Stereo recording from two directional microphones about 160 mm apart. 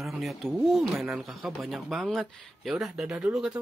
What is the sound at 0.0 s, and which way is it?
Speech, centre (ahead or behind).